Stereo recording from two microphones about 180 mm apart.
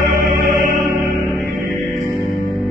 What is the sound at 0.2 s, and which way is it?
Music, 50° right (ahead or behind).